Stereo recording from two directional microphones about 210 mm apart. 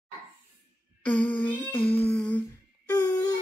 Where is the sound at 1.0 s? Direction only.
5° left (ahead or behind).